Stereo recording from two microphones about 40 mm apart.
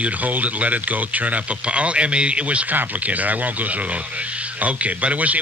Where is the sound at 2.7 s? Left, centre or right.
Right.